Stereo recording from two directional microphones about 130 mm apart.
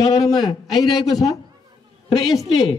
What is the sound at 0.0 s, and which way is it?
Speech, 30° left (ahead or behind).